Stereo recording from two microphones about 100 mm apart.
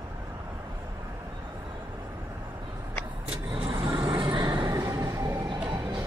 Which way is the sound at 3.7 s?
50° right (ahead or behind).